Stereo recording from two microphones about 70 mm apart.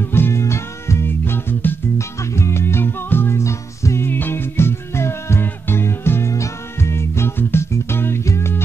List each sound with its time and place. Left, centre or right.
0.0 s music: left
2.0 s music: left